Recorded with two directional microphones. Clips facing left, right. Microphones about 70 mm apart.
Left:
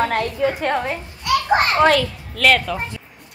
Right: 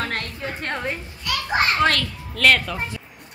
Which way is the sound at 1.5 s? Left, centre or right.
Left.